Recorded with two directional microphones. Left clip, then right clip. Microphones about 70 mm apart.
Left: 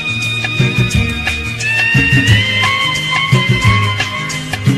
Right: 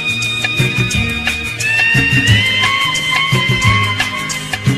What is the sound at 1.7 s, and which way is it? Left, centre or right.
Music, left.